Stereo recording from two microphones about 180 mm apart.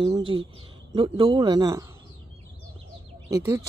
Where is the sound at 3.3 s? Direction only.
20° right (ahead or behind).